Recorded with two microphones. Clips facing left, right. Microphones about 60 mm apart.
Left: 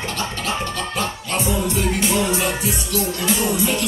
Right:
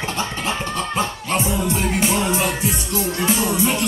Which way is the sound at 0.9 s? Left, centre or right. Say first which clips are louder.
Right 2 dB; right.